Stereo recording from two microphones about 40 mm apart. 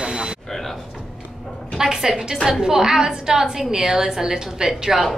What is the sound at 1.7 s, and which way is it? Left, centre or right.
A woman's voice, centre.